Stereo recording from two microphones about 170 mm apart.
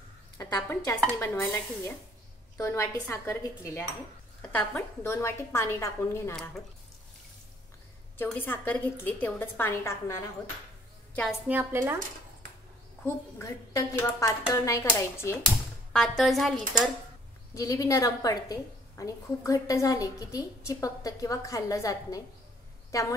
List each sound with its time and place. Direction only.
0.6 s a woman's voice: 15° left (ahead or behind)
6.3 s speech: 5° left (ahead or behind)
8.2 s a woman's voice: 10° left (ahead or behind)
11.4 s speech: 10° right (ahead or behind)
13.0 s a woman's voice: 20° left (ahead or behind)
15.9 s speech: centre (ahead or behind)
17.6 s a woman's voice: 20° left (ahead or behind)